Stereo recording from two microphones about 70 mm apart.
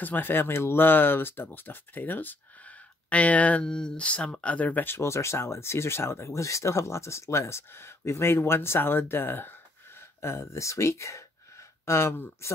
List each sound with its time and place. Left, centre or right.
0.0 s speech: left
10.2 s speech: left